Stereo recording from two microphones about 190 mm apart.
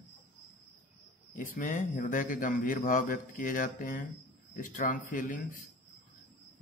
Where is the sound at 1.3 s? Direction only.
40° left (ahead or behind).